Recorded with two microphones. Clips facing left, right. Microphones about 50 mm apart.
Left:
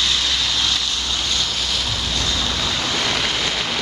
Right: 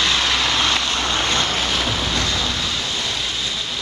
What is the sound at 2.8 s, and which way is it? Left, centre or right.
Waves, left.